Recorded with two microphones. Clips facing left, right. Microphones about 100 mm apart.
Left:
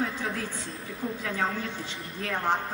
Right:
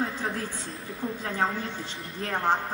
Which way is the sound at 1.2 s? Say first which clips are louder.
Right 2 dB; 30° right (ahead or behind).